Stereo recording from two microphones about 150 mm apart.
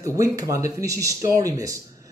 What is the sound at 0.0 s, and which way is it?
Speech, 20° right (ahead or behind).